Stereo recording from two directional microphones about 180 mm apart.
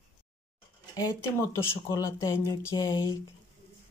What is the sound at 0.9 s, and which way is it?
Speech, 20° left (ahead or behind).